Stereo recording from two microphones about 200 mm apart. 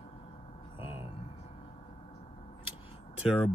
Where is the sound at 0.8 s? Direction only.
10° right (ahead or behind).